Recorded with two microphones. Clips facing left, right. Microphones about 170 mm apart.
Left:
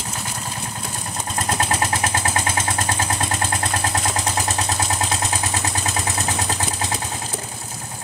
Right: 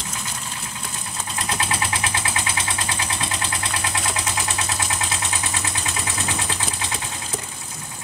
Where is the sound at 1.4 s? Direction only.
45° left (ahead or behind).